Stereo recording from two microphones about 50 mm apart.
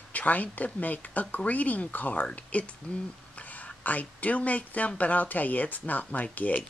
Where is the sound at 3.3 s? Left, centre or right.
Left.